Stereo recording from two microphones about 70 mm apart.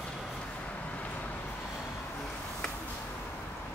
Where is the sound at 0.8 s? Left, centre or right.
Centre.